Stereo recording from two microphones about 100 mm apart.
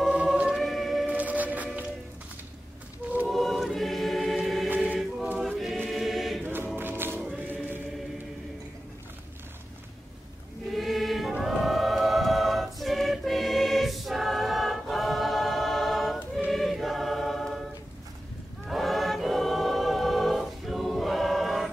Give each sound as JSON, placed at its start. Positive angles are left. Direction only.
{"t": 0.0, "sound": "choir", "side_deg": -5}
{"t": 1.0, "sound": "music", "side_deg": -15}
{"t": 3.3, "sound": "choir", "side_deg": 0}
{"t": 6.4, "sound": "choir", "side_deg": -20}
{"t": 6.8, "sound": "music", "side_deg": -20}
{"t": 7.4, "sound": "choir", "side_deg": -20}
{"t": 10.7, "sound": "choir", "side_deg": 0}
{"t": 18.7, "sound": "choir", "side_deg": 0}